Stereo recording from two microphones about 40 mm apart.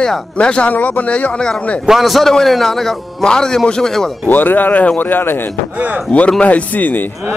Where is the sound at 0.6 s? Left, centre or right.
Left.